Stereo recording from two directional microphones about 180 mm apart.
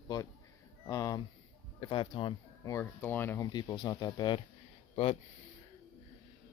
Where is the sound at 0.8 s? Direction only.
20° left (ahead or behind).